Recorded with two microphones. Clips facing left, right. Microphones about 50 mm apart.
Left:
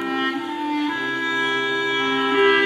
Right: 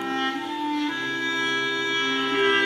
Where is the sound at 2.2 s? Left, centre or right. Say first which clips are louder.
Left 5 dB; centre.